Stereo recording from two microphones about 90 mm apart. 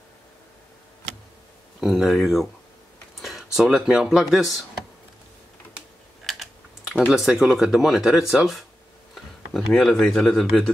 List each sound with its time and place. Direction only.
1.8 s speech: 5° right (ahead or behind)
6.3 s typing: centre (ahead or behind)
7.1 s speech: 5° right (ahead or behind)